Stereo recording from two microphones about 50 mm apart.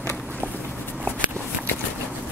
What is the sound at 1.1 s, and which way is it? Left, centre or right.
Walk, left.